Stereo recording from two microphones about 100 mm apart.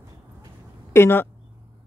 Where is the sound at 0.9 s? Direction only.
25° left (ahead or behind).